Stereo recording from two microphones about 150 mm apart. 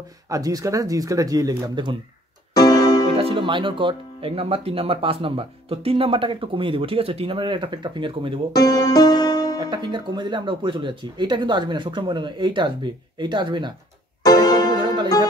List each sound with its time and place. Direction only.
0.3 s speech: 25° right (ahead or behind)
2.5 s music: 25° left (ahead or behind)
3.2 s speech: 35° right (ahead or behind)
8.5 s music: 25° left (ahead or behind)
9.7 s speech: 30° right (ahead or behind)
14.2 s music: 25° left (ahead or behind)